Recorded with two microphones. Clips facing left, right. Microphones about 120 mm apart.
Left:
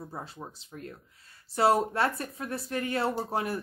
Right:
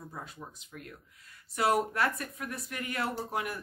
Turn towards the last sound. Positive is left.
turn(degrees=30)  # may be behind; listen again after turning